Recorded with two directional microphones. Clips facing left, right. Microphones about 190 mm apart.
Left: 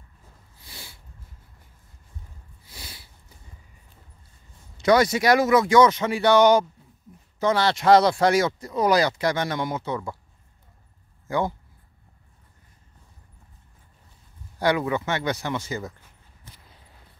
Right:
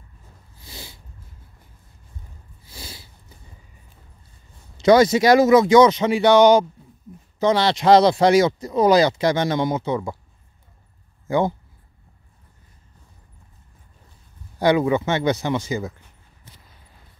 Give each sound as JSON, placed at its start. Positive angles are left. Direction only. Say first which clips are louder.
{"t": 0.7, "sound": "snort", "louder": "right 5 dB", "side_deg": -20}
{"t": 2.6, "sound": "snort", "louder": "right 5 dB", "side_deg": -30}
{"t": 4.8, "sound": "speech", "louder": "right 5 dB", "side_deg": -25}
{"t": 11.2, "sound": "speech", "louder": "right 5 dB", "side_deg": -25}
{"t": 14.6, "sound": "speech", "louder": "right 5 dB", "side_deg": -25}